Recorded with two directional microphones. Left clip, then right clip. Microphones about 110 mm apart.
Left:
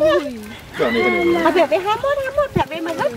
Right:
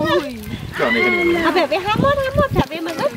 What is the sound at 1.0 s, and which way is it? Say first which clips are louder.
Speech: even; 20° right (ahead or behind).